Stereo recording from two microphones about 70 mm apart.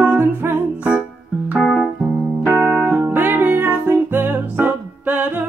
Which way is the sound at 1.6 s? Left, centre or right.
Centre.